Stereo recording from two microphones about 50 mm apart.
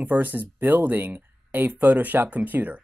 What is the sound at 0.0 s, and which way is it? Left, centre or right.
Speech, right.